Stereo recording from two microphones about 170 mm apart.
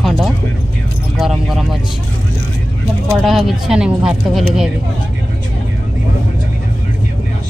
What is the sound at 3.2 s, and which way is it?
Speech, centre (ahead or behind).